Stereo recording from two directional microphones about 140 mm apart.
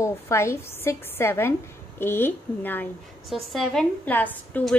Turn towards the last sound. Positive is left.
turn(degrees=10)  # may be behind; listen again after turning